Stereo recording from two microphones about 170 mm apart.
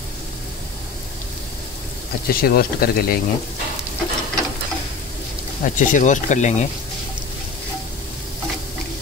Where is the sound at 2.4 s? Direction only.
65° left (ahead or behind).